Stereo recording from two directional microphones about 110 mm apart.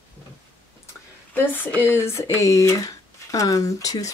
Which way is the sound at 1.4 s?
15° left (ahead or behind).